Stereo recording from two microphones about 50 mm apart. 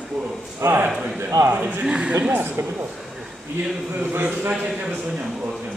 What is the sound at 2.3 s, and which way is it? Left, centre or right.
Speech, right.